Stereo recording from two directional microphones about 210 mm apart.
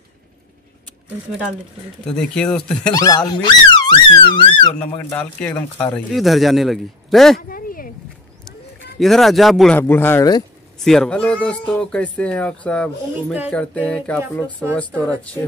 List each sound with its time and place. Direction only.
2.0 s speech: 5° left (ahead or behind)
2.9 s speech: 15° left (ahead or behind)
4.7 s speech: 5° left (ahead or behind)
7.4 s a sound: 40° left (ahead or behind)
9.0 s speech: centre (ahead or behind)
10.8 s speech: centre (ahead or behind)